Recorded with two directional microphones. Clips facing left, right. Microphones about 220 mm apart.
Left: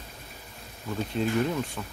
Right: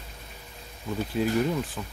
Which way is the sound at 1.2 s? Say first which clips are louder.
Right 1 dB; 5° right (ahead or behind).